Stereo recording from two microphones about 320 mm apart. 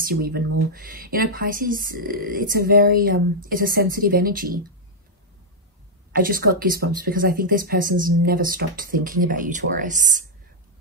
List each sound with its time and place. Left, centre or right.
0.0 s speech: right
6.1 s speech: right